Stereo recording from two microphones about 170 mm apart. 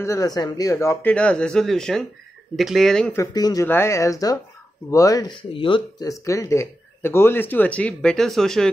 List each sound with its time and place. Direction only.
0.0 s speech: 20° left (ahead or behind); by 3.2 s 5° left (ahead or behind)
3.2 s speech: 20° left (ahead or behind); by 8.6 s centre (ahead or behind)